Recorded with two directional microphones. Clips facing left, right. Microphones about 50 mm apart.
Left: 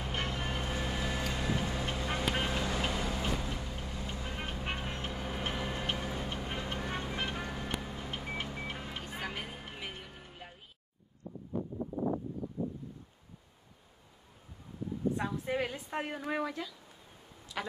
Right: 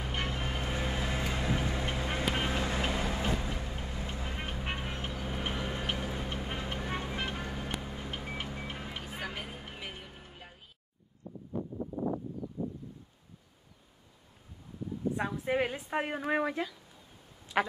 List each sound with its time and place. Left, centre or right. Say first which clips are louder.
0.0 s vehicle: right 1 dB; centre
0.7 s vehicle: right 1 dB; centre
2.2 s vehicle: right 1 dB; centre
2.5 s vehicle: right 1 dB; right
4.1 s vehicle: left 1 dB; centre
5.4 s tick-tock: right 1 dB; centre
6.2 s vehicle: right 1 dB; centre
7.4 s music: right 1 dB; centre
7.9 s a sound: right 1 dB; centre
8.4 s music: even; centre
15.1 s a woman's voice: right 3 dB; centre
17.6 s a sound: right 8 dB; right